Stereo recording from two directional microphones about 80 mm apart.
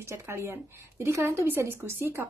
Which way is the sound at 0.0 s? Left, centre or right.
Right.